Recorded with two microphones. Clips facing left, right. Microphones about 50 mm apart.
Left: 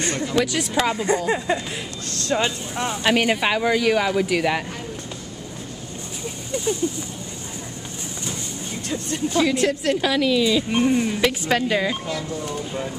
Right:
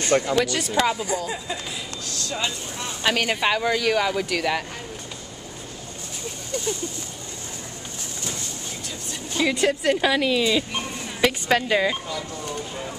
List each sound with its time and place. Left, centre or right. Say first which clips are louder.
0.4 s speech: even; centre
1.0 s speech: left 6 dB; left
3.0 s speech: left 2 dB; centre
6.5 s a sound: left 4 dB; centre
9.3 s a woman's voice: left 1 dB; centre
10.7 s speech: left 11 dB; left
11.1 s speech: even; centre